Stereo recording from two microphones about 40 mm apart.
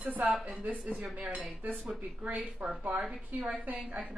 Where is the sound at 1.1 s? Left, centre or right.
Right.